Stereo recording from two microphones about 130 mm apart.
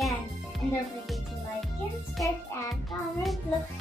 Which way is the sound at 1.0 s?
Centre (ahead or behind).